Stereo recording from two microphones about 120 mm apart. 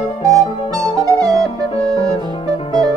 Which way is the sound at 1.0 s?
30° right (ahead or behind).